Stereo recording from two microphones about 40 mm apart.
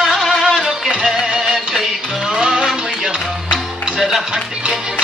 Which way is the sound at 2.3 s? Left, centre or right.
Centre.